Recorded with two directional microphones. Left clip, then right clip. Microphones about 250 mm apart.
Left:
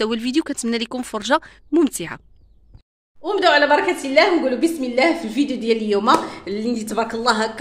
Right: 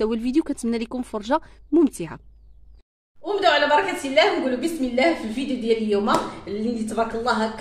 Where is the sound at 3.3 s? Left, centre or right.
Left.